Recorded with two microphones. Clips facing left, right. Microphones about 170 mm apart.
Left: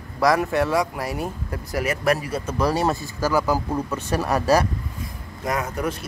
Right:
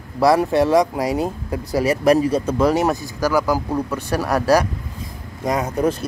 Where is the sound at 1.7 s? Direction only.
30° right (ahead or behind); by 3.6 s 10° right (ahead or behind).